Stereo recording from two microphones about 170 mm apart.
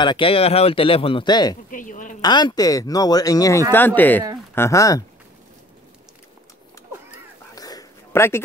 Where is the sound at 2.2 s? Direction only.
25° left (ahead or behind).